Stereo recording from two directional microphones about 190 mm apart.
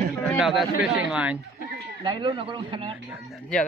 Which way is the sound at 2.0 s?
25° right (ahead or behind).